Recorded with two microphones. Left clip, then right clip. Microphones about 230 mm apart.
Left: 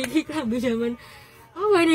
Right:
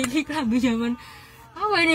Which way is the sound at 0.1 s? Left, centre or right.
Left.